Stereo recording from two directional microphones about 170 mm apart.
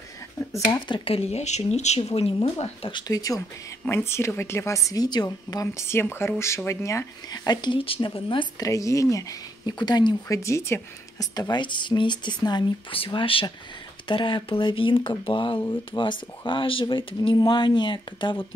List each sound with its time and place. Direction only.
0.8 s a woman's voice: 30° left (ahead or behind)